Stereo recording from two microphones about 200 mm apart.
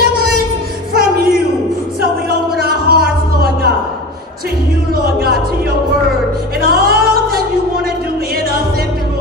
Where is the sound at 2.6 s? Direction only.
50° right (ahead or behind).